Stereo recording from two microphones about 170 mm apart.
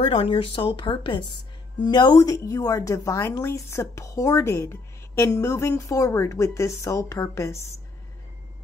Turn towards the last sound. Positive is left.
turn(degrees=15)  # may be behind; listen again after turning